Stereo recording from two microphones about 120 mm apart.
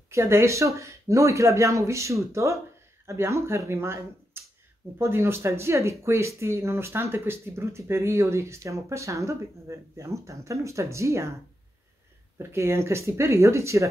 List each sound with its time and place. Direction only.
0.1 s speech: 20° right (ahead or behind)
12.4 s speech: 20° right (ahead or behind)